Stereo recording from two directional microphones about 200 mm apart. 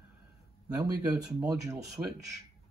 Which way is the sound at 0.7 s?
15° right (ahead or behind).